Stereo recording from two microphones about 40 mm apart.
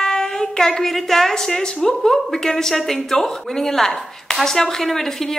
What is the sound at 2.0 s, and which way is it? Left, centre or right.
A woman's voice, centre.